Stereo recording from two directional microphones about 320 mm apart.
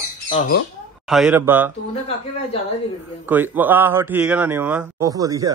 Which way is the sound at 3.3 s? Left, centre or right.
Centre.